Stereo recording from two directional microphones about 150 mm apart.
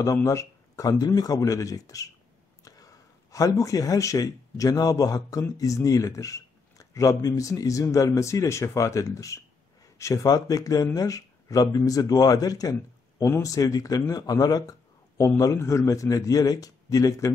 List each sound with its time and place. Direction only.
0.0 s a man's voice: 20° left (ahead or behind)